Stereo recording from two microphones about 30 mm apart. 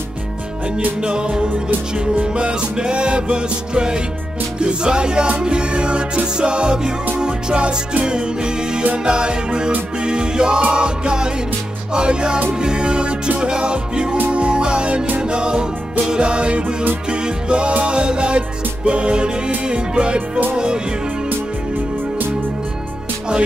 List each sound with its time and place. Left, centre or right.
1.0 s music: right
20.2 s music: right
20.5 s music: right